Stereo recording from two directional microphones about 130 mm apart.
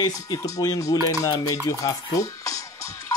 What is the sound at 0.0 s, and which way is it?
Speech, 30° left (ahead or behind).